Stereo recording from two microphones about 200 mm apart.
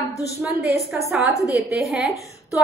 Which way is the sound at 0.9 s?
5° right (ahead or behind).